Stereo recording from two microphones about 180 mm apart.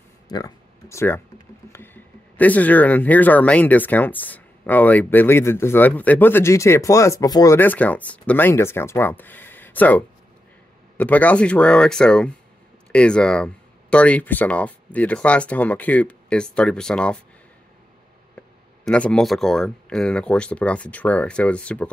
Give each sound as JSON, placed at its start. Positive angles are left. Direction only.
{"t": 0.3, "sound": "speech", "side_deg": 20}
{"t": 18.9, "sound": "speech", "side_deg": 5}